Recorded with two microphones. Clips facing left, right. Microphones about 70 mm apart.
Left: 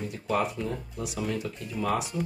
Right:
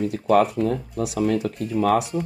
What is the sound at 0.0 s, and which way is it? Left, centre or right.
Speech, right.